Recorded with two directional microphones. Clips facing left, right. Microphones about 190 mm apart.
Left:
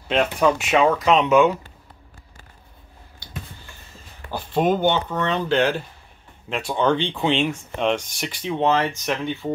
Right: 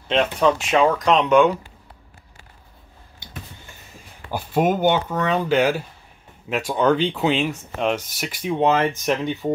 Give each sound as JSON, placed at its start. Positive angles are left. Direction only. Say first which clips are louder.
{"t": 0.1, "sound": "speech", "louder": "right 1 dB", "side_deg": 5}
{"t": 3.2, "sound": "a sound", "louder": "left 1 dB", "side_deg": -20}
{"t": 4.3, "sound": "speech", "louder": "even", "side_deg": -10}